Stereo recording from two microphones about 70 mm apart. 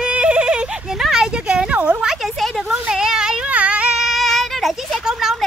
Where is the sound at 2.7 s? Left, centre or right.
Centre.